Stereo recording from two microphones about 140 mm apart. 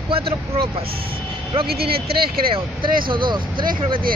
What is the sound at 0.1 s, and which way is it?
Speech, 40° right (ahead or behind).